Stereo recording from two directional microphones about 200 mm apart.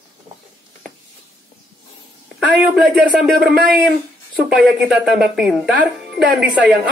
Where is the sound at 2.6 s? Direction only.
Centre (ahead or behind).